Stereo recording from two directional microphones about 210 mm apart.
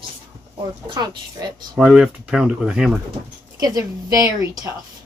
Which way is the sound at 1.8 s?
5° right (ahead or behind).